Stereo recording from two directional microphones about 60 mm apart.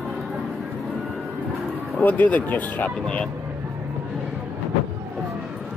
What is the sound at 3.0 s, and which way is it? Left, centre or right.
Speech, centre.